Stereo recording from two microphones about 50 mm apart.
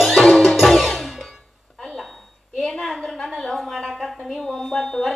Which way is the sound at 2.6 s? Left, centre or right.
Centre.